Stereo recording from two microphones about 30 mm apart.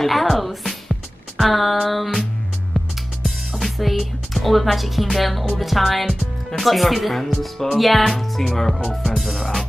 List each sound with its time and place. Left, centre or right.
0.0 s music: centre
1.4 s speech: centre
3.3 s music: centre
4.4 s speech: centre